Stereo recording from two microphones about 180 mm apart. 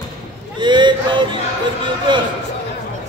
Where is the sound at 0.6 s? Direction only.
25° right (ahead or behind).